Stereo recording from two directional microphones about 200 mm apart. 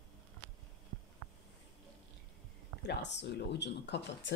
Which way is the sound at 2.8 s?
60° left (ahead or behind).